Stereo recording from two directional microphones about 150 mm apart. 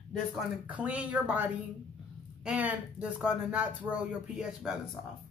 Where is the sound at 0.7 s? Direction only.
10° right (ahead or behind).